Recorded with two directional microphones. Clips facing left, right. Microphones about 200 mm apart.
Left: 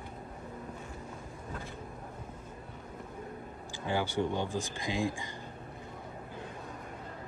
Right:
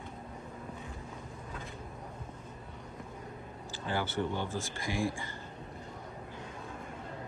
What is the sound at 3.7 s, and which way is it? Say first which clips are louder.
Speech: left 2 dB; 15° left (ahead or behind).